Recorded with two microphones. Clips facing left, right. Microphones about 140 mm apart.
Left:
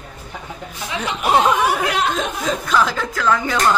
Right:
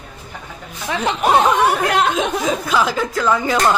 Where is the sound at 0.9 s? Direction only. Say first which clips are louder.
Right 3 dB; 60° right (ahead or behind).